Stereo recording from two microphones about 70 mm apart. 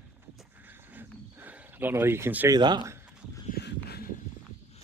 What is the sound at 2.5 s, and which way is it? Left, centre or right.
Speech, right.